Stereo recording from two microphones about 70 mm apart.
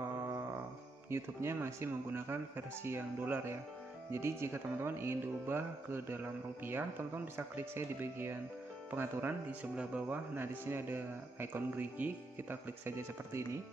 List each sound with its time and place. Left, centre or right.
1.1 s speech: right
9.5 s speech: right
12.8 s speech: right